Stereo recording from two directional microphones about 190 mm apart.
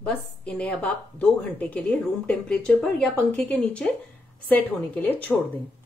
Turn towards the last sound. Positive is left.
turn(degrees=10)  # may be behind; listen again after turning